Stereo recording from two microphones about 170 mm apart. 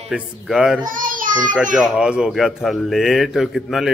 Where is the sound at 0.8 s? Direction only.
50° right (ahead or behind).